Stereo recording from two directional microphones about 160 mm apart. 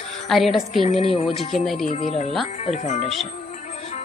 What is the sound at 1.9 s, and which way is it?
Speech, 45° left (ahead or behind).